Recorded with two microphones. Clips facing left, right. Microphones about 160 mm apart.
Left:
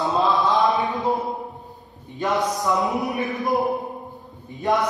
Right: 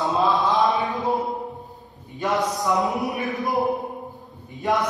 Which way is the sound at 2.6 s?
Centre (ahead or behind).